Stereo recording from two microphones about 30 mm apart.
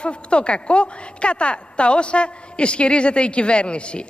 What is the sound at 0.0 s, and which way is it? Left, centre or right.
A woman's voice, left.